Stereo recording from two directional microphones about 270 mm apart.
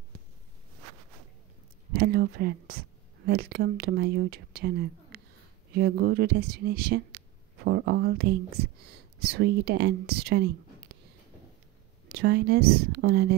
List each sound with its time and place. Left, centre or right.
2.0 s speech: right
12.1 s speech: right